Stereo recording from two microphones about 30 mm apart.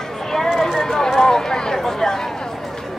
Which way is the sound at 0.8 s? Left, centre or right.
Centre.